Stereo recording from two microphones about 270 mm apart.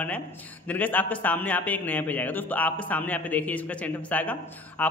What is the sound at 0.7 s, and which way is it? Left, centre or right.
A man's voice, centre.